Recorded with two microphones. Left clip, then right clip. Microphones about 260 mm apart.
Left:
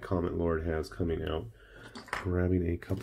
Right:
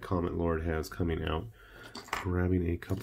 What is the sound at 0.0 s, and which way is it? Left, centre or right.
Speech, centre.